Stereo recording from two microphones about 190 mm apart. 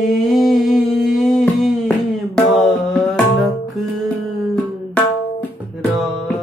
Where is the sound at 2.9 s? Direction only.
Centre (ahead or behind).